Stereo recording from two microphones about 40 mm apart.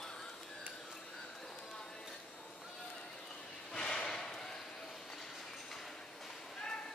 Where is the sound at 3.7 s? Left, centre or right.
Centre.